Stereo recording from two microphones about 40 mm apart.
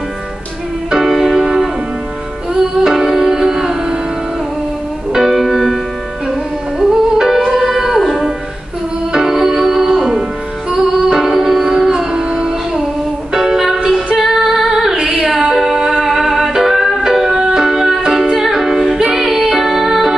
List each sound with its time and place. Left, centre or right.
0.8 s music: centre
5.1 s music: centre
6.8 s music: centre
9.1 s music: centre
14.1 s female singing: centre
16.0 s music: centre